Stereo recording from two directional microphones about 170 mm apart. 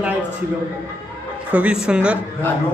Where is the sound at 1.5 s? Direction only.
5° right (ahead or behind).